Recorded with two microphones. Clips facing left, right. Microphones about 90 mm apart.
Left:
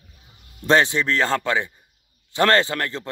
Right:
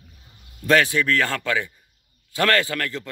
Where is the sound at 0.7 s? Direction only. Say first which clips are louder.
Left 1 dB; 25° left (ahead or behind).